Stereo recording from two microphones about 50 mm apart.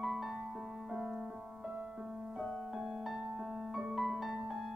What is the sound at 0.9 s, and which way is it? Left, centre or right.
Music, centre.